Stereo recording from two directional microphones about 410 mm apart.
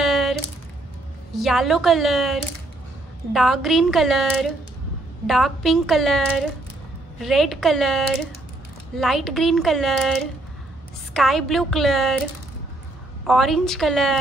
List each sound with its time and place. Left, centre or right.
0.0 s a sound: centre
1.3 s a woman's voice: centre
13.3 s a woman's voice: centre